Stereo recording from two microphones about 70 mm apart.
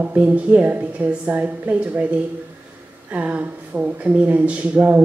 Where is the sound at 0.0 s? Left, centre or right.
Right.